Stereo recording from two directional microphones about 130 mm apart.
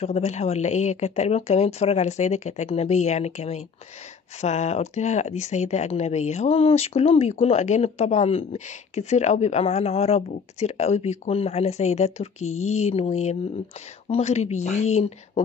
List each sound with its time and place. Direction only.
0.0 s speech: 60° left (ahead or behind)